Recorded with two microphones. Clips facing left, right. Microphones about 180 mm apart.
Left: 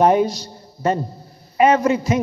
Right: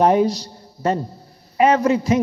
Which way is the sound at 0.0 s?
35° right (ahead or behind).